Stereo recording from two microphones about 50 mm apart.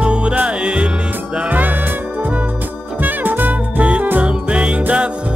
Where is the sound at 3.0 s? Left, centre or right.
Right.